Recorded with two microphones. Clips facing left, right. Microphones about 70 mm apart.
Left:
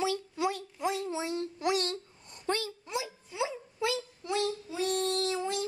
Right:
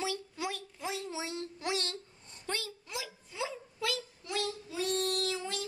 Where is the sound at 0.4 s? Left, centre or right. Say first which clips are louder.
Left 7 dB; left.